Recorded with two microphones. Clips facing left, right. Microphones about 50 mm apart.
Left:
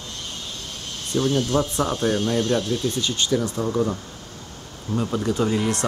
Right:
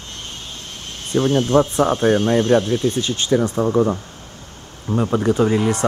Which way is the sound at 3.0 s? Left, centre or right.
Right.